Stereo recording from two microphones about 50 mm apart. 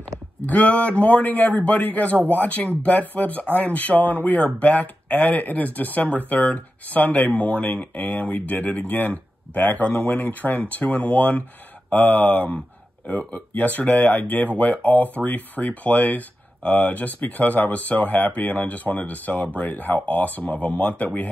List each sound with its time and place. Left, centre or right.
0.5 s speech: left